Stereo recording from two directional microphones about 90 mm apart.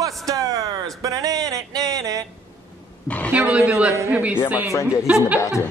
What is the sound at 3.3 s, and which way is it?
A man's voice, 15° right (ahead or behind).